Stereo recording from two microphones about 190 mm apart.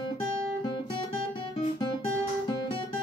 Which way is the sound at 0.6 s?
25° left (ahead or behind).